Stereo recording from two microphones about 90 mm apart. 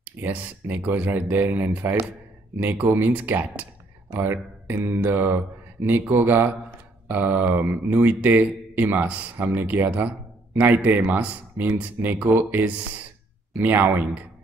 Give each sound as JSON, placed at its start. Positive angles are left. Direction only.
{"t": 0.0, "sound": "speech", "side_deg": -20}